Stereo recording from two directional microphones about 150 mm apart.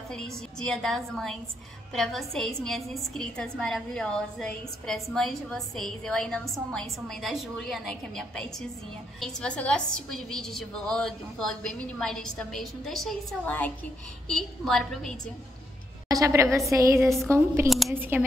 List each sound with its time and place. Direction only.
0.1 s a woman's voice: 5° left (ahead or behind)
16.1 s a woman's voice: 20° right (ahead or behind)
17.6 s a woman's voice: centre (ahead or behind)
17.9 s speech: 15° right (ahead or behind)